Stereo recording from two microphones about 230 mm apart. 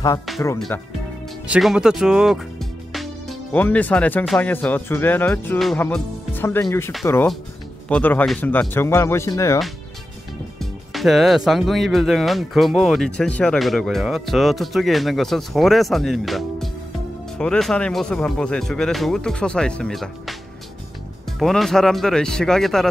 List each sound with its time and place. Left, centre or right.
0.7 s speech: centre
1.5 s speech: centre
10.6 s speech: centre